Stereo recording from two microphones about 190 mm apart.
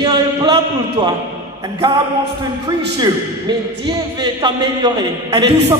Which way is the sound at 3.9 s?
20° right (ahead or behind).